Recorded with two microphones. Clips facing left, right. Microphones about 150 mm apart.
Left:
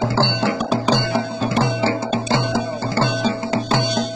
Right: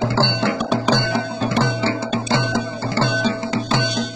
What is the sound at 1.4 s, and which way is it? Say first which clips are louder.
Music: even; 40° left (ahead or behind).